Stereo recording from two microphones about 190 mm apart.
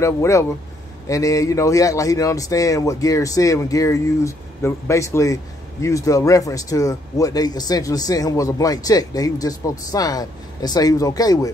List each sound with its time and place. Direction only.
0.0 s a man's voice: 15° left (ahead or behind)